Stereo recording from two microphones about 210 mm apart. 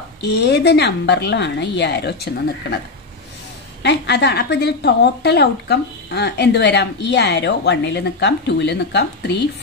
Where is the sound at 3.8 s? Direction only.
55° left (ahead or behind).